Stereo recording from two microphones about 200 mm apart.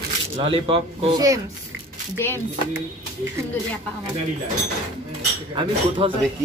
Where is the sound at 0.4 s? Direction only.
25° right (ahead or behind).